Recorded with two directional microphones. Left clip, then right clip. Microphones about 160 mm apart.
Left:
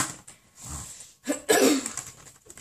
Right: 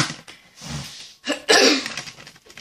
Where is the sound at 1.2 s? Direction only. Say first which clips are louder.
Right 6 dB; 35° left (ahead or behind).